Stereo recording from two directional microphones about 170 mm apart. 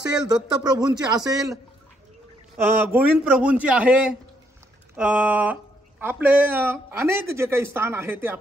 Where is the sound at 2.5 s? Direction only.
10° right (ahead or behind).